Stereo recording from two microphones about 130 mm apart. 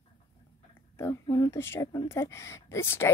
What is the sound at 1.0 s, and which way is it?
A woman's voice, 20° left (ahead or behind).